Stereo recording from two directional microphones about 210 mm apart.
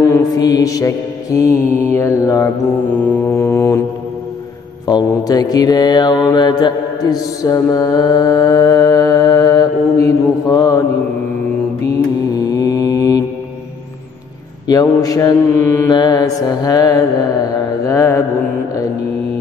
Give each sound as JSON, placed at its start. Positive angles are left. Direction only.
{"t": 0.0, "sound": "mantra", "side_deg": 15}
{"t": 4.8, "sound": "mantra", "side_deg": 20}
{"t": 12.3, "sound": "mantra", "side_deg": 15}
{"t": 14.7, "sound": "mantra", "side_deg": 15}